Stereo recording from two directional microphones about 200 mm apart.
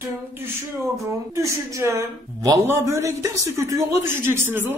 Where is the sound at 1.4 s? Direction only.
15° right (ahead or behind).